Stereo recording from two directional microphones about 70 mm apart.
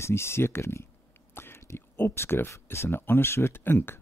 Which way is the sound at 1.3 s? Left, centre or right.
Left.